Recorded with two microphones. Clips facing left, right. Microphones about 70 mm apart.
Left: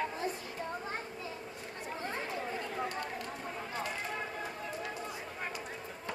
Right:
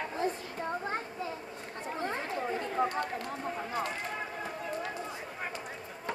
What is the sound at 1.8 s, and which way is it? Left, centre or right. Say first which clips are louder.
Chatter: right 4 dB; right.